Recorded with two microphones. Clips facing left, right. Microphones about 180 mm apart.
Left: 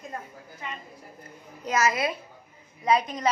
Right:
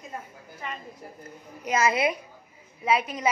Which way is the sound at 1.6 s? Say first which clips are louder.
Right 1 dB; 25° right (ahead or behind).